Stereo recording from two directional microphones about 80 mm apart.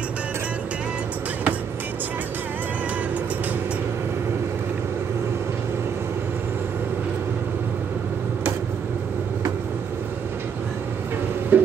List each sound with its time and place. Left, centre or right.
11.5 s music: right